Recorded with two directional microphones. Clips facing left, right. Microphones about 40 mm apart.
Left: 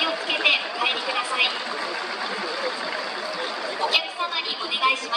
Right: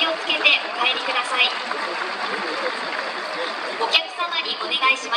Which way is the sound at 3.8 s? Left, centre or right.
Right.